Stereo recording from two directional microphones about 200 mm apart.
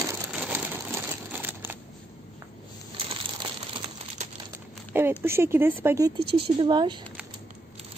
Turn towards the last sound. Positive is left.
turn(degrees=-25)  # may be behind; listen again after turning